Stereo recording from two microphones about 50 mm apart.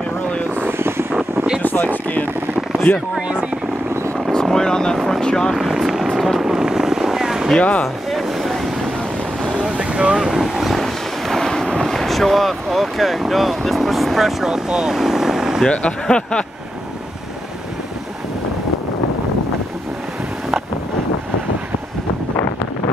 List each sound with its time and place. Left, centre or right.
0.6 s vehicle: right
1.6 s a sound: left
3.2 s speech: centre
4.3 s vehicle: centre
4.9 s speech: centre
5.6 s vehicle: centre
7.5 s speech: left
7.8 s vehicle: centre
9.5 s boat: centre
10.1 s speech: centre
10.4 s vehicle: centre
11.9 s speech: centre
15.7 s speech: left